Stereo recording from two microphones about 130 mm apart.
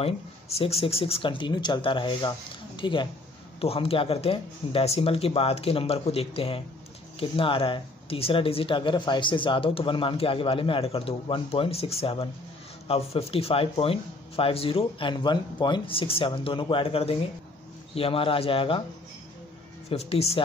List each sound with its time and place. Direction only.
0.0 s speech: 50° left (ahead or behind)
19.9 s speech: 50° left (ahead or behind)